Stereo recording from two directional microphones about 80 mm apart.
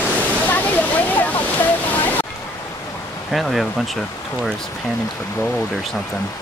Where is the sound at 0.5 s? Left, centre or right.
Left.